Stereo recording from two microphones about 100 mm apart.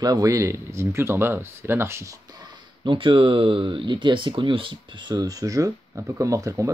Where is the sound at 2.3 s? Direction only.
50° right (ahead or behind); by 6.7 s 30° right (ahead or behind).